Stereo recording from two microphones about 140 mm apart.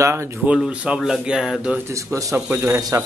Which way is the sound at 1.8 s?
20° right (ahead or behind).